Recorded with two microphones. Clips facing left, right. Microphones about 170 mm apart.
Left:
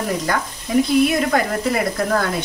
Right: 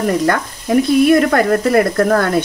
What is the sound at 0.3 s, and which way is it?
Speech, 60° right (ahead or behind).